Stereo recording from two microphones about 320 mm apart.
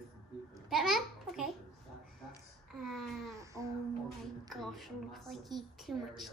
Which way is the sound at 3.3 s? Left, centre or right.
Centre.